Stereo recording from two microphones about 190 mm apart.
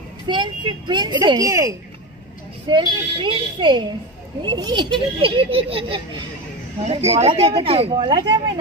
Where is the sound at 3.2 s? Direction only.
25° right (ahead or behind).